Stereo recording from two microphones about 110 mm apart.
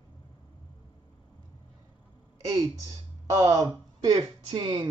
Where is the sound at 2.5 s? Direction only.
30° right (ahead or behind).